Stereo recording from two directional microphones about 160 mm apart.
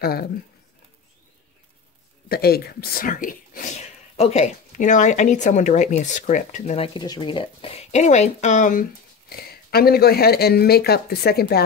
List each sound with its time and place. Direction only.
0.0 s speech: 70° left (ahead or behind)
2.2 s speech: 75° left (ahead or behind); by 6.8 s 50° left (ahead or behind)
6.8 s speech: 30° left (ahead or behind); by 8.8 s 50° left (ahead or behind)
9.3 s speech: 75° left (ahead or behind)